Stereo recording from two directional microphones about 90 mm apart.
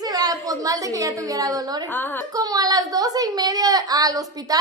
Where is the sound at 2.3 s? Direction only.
45° right (ahead or behind).